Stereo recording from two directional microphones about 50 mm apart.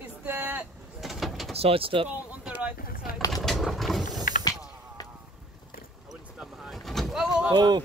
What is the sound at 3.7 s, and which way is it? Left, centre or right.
Roaring cats, centre.